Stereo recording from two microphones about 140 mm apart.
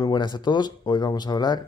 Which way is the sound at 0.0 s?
30° left (ahead or behind).